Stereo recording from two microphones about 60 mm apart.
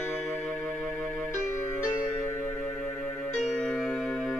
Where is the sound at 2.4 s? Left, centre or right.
Left; by 4.3 s centre.